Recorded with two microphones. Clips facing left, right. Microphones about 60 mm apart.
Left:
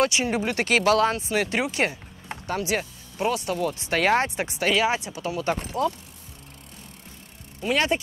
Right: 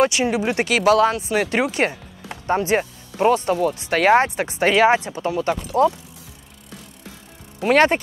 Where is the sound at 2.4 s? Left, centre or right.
Right.